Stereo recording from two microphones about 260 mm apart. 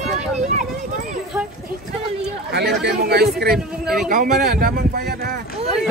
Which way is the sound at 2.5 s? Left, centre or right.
Right.